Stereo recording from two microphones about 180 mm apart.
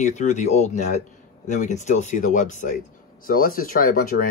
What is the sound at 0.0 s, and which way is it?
Speech, 40° left (ahead or behind).